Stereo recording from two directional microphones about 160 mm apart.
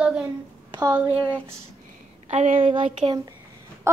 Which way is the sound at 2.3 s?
50° right (ahead or behind).